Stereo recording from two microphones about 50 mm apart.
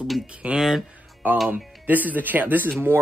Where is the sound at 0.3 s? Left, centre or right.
Right.